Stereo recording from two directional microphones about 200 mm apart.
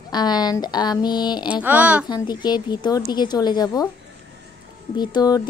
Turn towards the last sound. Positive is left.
turn(degrees=20)  # may be behind; listen again after turning